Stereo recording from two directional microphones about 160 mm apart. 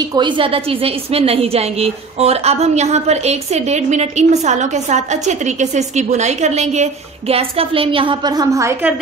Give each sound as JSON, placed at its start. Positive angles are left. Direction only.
{"t": 0.0, "sound": "a woman's voice", "side_deg": -25}